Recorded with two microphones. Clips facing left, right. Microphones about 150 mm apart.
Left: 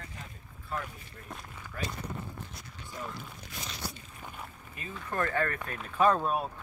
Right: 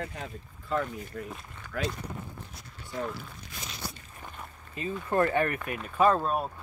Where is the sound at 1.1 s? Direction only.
75° right (ahead or behind).